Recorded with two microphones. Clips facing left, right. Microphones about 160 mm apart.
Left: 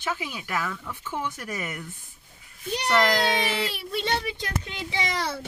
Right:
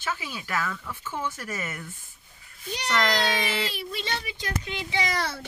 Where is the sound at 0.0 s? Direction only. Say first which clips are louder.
Left 2 dB; 15° left (ahead or behind).